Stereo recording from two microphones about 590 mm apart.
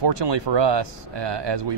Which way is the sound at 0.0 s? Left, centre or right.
Right.